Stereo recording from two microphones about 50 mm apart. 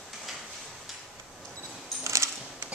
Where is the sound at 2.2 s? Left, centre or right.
Right.